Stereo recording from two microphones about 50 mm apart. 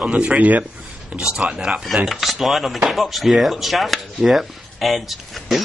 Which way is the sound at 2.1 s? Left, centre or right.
Centre.